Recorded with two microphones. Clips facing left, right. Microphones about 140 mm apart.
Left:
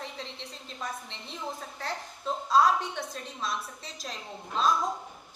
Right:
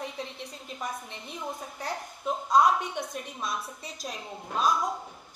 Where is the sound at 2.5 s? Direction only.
20° right (ahead or behind).